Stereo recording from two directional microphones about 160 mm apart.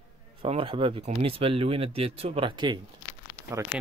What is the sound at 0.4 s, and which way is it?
Speech, 35° right (ahead or behind).